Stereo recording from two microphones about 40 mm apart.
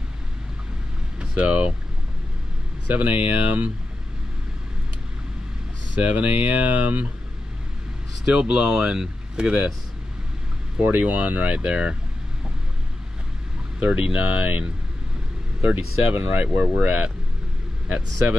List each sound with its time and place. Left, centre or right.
1.3 s speech: right
2.9 s speech: right
5.9 s speech: right
8.3 s speech: right
10.8 s speech: right
11.1 s speech: right
13.7 s speech: right